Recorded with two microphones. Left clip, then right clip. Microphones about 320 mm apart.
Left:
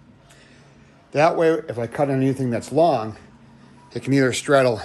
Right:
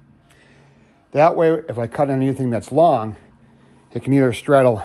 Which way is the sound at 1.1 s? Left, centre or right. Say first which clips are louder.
Right 3 dB; centre.